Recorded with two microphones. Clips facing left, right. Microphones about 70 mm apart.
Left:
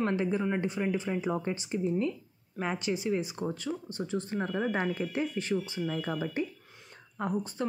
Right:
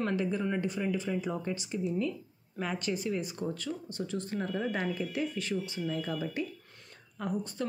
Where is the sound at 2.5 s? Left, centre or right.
Centre.